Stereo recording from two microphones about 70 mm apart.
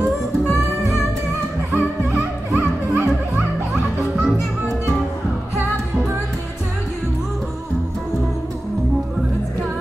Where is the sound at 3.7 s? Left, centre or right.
Centre.